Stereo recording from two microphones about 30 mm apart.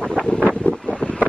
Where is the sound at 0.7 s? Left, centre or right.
Left.